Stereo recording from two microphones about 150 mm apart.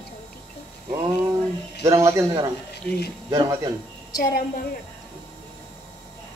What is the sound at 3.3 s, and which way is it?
Speech, 20° right (ahead or behind).